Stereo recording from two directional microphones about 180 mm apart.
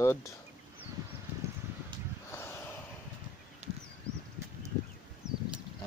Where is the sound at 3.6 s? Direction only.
40° right (ahead or behind).